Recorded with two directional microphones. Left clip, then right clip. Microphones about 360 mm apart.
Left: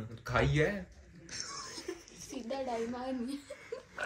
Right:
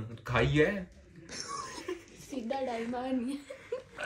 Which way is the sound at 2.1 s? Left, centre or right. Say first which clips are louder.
Right 4 dB; right.